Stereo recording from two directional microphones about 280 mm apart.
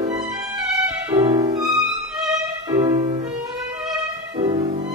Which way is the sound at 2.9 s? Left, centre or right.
Right.